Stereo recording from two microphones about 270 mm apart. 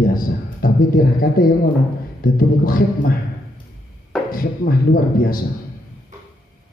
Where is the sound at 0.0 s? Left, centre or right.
Left.